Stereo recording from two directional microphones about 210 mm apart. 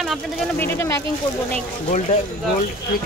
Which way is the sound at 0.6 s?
10° left (ahead or behind).